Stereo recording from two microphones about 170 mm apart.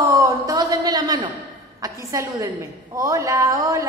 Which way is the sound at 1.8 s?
20° right (ahead or behind).